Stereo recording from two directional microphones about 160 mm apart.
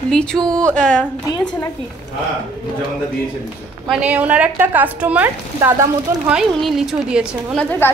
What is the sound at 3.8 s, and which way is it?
A woman's voice, 5° right (ahead or behind).